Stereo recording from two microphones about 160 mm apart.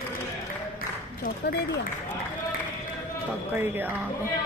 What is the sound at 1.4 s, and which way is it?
Speech, 90° left.